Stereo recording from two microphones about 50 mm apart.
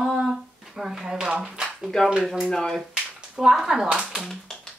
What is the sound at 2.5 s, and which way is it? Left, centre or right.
Speech, centre.